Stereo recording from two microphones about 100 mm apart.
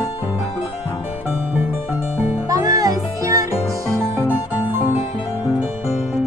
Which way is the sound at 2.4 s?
35° right (ahead or behind).